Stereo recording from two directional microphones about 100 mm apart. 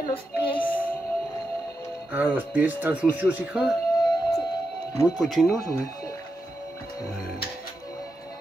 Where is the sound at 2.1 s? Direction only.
20° right (ahead or behind).